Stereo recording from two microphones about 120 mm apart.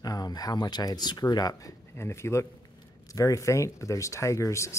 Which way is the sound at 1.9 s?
20° left (ahead or behind).